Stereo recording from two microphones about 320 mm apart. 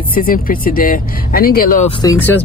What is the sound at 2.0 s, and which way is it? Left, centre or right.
Speech, centre.